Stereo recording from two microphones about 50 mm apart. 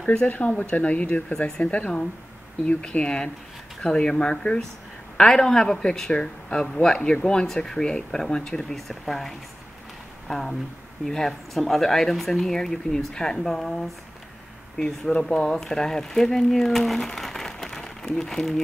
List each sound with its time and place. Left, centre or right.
0.0 s speech: centre
0.3 s speech: left; by 18.6 s centre